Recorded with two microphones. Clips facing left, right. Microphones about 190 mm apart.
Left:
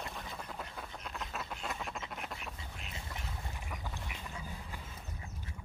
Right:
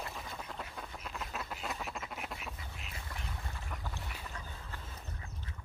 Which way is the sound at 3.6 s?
10° left (ahead or behind).